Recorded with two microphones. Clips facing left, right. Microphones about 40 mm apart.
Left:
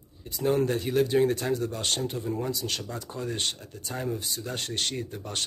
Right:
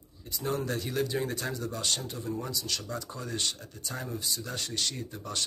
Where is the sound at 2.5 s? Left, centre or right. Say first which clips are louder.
Left 2 dB; left.